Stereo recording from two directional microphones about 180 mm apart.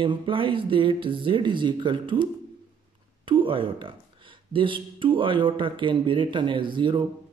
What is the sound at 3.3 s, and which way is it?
Speech, 30° right (ahead or behind).